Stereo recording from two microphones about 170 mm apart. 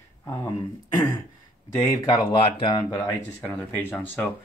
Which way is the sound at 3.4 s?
15° left (ahead or behind).